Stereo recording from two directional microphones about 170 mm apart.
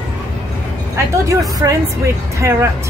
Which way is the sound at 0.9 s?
15° right (ahead or behind).